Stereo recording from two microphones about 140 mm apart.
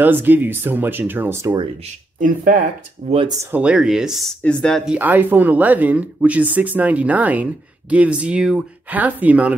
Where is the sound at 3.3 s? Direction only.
20° right (ahead or behind).